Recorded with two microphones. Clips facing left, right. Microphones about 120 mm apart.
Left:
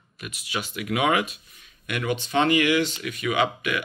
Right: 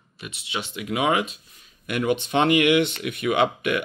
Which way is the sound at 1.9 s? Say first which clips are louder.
Right 4 dB; 50° right (ahead or behind).